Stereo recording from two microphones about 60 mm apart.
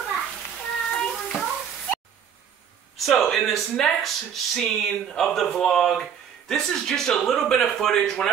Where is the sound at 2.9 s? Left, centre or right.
Centre.